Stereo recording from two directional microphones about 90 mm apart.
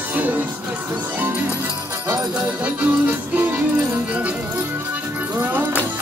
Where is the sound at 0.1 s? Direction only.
20° right (ahead or behind).